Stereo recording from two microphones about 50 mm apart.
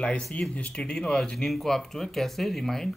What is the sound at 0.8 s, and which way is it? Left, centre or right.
Speech, centre.